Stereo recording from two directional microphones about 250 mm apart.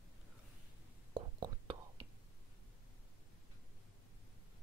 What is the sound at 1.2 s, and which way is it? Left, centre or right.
Whispering, centre.